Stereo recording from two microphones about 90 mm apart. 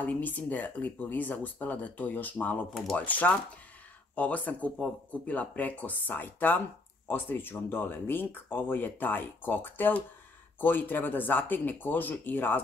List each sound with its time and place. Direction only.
0.0 s speech: 20° left (ahead or behind)
2.7 s speech: centre (ahead or behind)
3.1 s speech: 20° left (ahead or behind)